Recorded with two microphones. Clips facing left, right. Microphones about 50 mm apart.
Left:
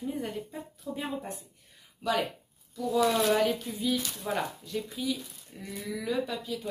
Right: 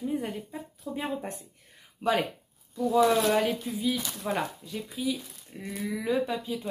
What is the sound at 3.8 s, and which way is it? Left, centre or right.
Speech, centre.